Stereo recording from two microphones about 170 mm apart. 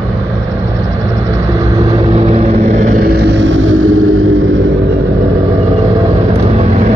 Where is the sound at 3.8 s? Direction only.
50° right (ahead or behind).